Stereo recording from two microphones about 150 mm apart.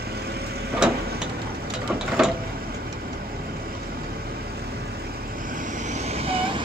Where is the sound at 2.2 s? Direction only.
5° right (ahead or behind).